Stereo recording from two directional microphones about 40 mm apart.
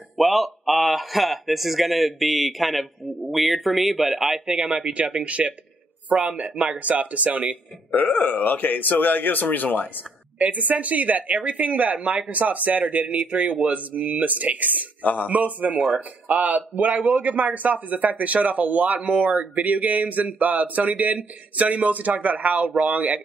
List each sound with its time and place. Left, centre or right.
0.2 s speech: centre; by 7.5 s right
7.9 s speech: left
10.4 s speech: right